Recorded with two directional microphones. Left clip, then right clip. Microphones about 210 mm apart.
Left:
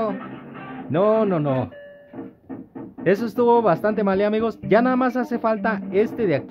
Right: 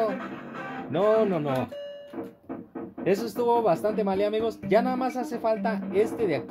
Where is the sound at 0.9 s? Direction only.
35° left (ahead or behind).